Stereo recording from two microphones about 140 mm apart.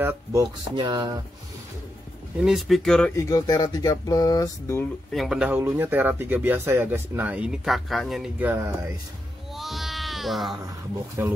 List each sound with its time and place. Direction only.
0.0 s speech: 15° right (ahead or behind)
0.4 s speech: 35° right (ahead or behind)
2.4 s speech: centre (ahead or behind)
3.2 s speech: 20° left (ahead or behind)
5.1 s speech: centre (ahead or behind)
5.5 s speech: 15° right (ahead or behind)
8.5 s speech: 15° right (ahead or behind)
9.5 s music: centre (ahead or behind)
11.2 s speech: 15° right (ahead or behind)